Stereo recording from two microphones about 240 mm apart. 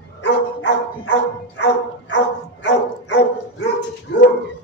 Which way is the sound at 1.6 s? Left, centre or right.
Left.